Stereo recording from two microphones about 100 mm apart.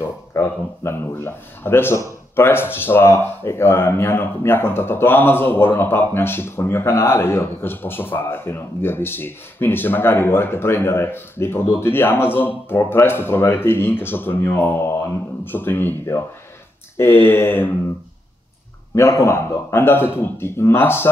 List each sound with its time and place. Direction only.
0.0 s speech: 25° left (ahead or behind)
18.9 s speech: 30° left (ahead or behind)